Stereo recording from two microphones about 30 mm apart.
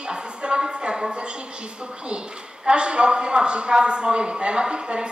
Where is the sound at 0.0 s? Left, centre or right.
Right.